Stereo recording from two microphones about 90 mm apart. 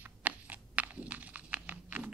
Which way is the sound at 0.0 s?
15° right (ahead or behind).